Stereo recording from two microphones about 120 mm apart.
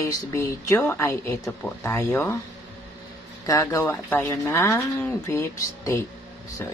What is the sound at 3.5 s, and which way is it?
Speech, 30° left (ahead or behind).